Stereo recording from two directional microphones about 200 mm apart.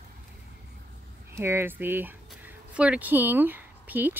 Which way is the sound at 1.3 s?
10° right (ahead or behind).